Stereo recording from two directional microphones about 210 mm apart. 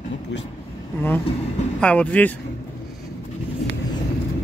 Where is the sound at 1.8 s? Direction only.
5° left (ahead or behind).